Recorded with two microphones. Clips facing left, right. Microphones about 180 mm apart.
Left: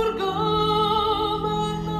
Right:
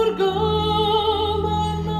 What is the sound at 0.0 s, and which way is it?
Music, 30° right (ahead or behind).